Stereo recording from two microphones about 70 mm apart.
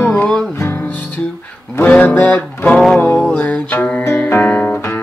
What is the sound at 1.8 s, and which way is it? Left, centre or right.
Music, centre.